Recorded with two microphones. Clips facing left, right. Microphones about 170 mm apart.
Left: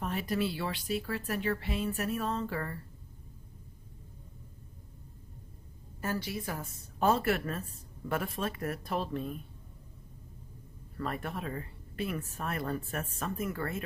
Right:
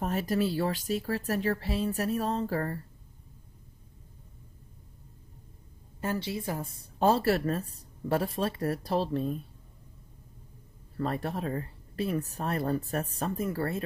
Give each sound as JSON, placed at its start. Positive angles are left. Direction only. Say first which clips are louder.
{"t": 0.0, "sound": "a woman's voice", "louder": "right 4 dB", "side_deg": -40}
{"t": 5.9, "sound": "a woman's voice", "louder": "right 3 dB", "side_deg": -25}
{"t": 11.0, "sound": "a woman's voice", "louder": "right 5 dB", "side_deg": -35}